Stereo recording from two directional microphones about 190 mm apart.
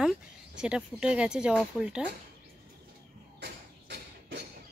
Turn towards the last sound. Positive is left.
turn(degrees=-60)  # may be behind; listen again after turning